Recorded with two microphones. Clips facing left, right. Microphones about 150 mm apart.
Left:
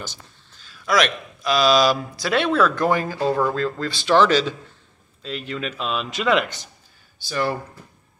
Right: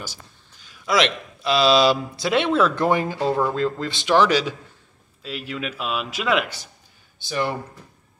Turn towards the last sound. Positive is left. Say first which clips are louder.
# left 1 dB
turn(degrees=-20)  # may be behind; listen again after turning